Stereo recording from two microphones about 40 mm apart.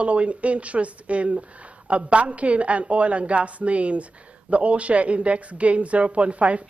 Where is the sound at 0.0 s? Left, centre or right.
Right.